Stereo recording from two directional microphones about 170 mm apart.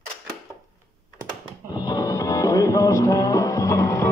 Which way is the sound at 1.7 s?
25° left (ahead or behind).